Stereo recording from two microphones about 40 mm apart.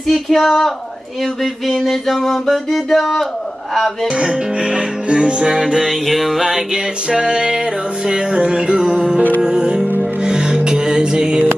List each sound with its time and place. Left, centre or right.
0.0 s speech: centre
0.4 s music: centre
4.1 s music: centre
5.5 s music: centre
8.7 s music: centre